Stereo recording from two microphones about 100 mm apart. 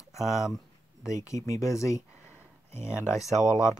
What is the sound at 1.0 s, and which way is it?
Speech, 30° left (ahead or behind).